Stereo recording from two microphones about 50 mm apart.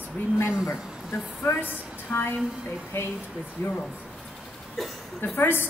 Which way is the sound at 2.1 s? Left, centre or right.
Left.